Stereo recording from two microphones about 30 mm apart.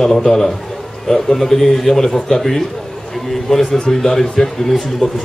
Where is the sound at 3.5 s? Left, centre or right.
Left.